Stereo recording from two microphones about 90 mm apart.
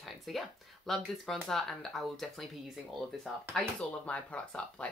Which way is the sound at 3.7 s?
15° left (ahead or behind).